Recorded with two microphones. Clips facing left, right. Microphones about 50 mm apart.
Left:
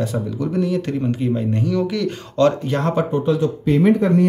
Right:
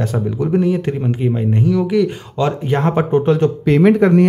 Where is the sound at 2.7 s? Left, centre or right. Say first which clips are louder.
Right 4 dB; right.